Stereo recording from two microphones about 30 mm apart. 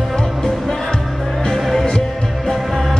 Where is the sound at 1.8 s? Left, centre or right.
Centre.